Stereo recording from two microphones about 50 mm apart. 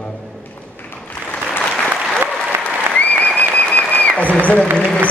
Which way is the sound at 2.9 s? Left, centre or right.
Left.